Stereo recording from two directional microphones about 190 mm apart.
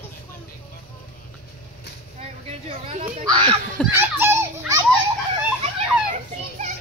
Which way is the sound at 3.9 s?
10° right (ahead or behind).